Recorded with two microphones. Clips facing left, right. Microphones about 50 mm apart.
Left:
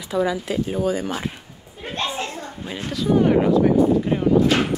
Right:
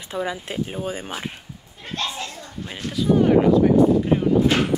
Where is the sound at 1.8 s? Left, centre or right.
Centre.